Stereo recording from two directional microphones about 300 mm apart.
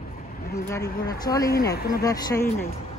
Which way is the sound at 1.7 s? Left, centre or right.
Left.